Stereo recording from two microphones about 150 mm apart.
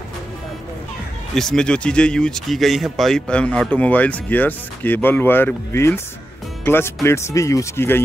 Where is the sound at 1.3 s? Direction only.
5° left (ahead or behind).